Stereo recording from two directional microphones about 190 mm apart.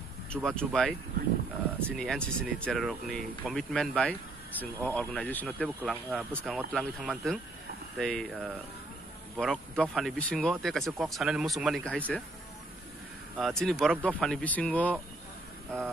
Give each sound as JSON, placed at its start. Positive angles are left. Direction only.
{"t": 0.3, "sound": "speech", "side_deg": 5}
{"t": 5.8, "sound": "speech", "side_deg": -5}
{"t": 13.4, "sound": "speech", "side_deg": 0}